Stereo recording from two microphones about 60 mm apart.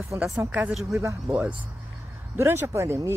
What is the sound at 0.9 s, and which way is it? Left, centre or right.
Speech, right.